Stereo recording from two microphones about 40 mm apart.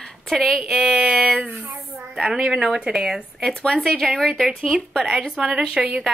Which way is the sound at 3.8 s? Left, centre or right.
Centre.